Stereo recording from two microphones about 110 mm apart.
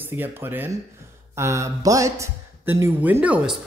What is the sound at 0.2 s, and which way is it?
Speech, 20° right (ahead or behind).